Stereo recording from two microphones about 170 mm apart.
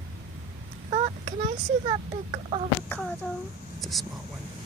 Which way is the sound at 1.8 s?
40° right (ahead or behind).